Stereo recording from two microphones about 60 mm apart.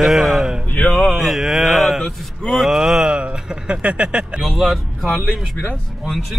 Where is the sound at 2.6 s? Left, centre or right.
Centre.